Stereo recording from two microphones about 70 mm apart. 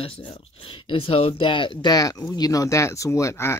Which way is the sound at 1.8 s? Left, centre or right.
Left.